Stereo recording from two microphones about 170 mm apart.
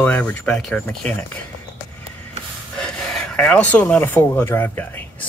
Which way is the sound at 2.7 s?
5° left (ahead or behind).